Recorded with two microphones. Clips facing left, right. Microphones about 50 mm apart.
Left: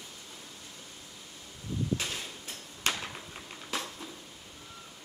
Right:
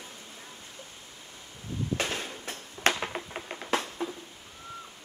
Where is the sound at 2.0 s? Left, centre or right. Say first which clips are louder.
Right 5 dB; right.